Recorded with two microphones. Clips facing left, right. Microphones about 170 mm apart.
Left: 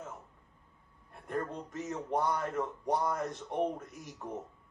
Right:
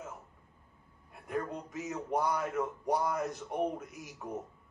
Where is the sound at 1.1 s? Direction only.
5° right (ahead or behind).